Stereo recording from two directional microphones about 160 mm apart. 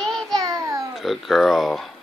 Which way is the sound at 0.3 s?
25° right (ahead or behind).